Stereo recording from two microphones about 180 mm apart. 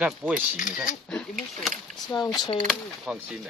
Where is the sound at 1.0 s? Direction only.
5° left (ahead or behind).